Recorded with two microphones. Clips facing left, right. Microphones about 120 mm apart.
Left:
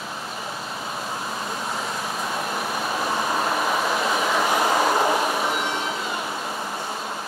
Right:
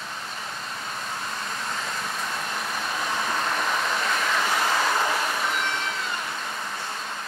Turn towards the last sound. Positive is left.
turn(degrees=15)  # may be behind; listen again after turning